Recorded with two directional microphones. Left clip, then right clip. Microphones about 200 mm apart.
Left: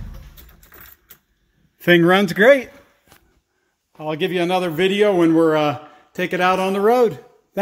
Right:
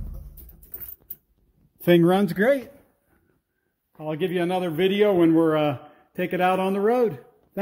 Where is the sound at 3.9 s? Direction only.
5° left (ahead or behind).